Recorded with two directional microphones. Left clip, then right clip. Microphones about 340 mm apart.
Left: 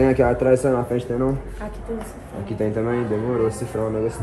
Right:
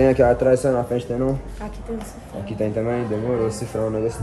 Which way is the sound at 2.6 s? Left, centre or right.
Centre.